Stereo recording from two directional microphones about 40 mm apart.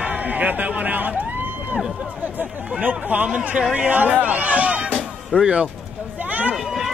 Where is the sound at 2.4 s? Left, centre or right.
Right.